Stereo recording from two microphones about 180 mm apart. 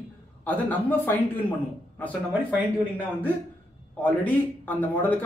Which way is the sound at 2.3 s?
10° right (ahead or behind).